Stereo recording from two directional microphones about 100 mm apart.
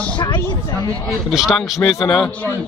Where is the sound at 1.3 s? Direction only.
5° right (ahead or behind).